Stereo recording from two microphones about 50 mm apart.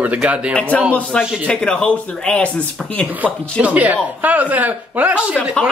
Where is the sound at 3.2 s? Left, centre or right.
Right.